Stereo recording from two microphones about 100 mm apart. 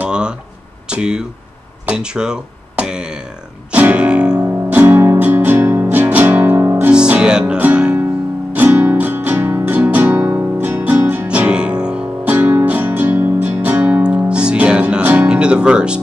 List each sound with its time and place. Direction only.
0.0 s a sound: 10° right (ahead or behind)
0.8 s speech: 10° right (ahead or behind)
3.7 s music: 15° right (ahead or behind)